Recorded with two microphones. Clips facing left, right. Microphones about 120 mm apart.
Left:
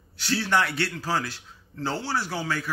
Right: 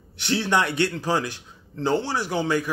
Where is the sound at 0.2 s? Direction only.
20° right (ahead or behind).